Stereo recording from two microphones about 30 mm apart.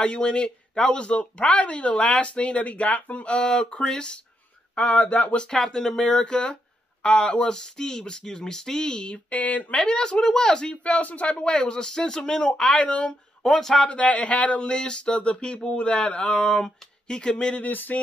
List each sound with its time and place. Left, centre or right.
0.0 s speech: left
3.3 s speech: left
5.7 s speech: left
7.5 s speech: left
8.8 s speech: left
9.3 s speech: left
9.8 s speech: left
10.8 s speech: left
11.3 s speech: left
12.7 s speech: left
13.5 s a man's voice: centre
13.8 s speech: left
14.7 s speech: left
17.6 s a sound: left